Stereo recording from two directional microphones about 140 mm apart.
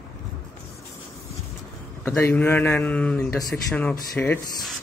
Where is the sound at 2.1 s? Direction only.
15° left (ahead or behind).